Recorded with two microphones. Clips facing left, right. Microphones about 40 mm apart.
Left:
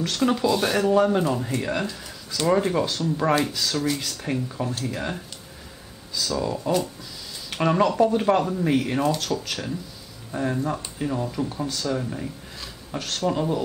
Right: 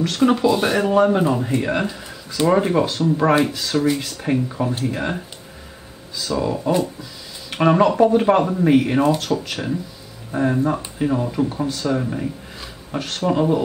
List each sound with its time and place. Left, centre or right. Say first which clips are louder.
0.0 s speech: right 5 dB; centre